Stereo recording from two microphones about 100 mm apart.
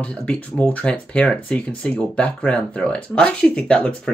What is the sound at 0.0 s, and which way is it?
Speech, 10° left (ahead or behind).